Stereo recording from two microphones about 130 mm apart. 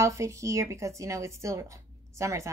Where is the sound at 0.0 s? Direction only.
25° right (ahead or behind).